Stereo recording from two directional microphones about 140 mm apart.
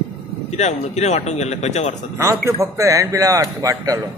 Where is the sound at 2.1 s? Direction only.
20° right (ahead or behind).